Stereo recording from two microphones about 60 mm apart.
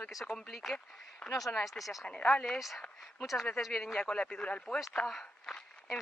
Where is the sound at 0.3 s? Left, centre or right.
Centre.